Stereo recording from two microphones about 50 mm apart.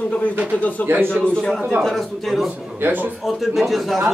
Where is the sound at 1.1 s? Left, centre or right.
Centre.